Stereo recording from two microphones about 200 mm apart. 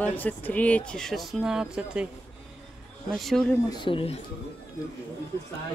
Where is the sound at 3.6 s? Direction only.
25° left (ahead or behind).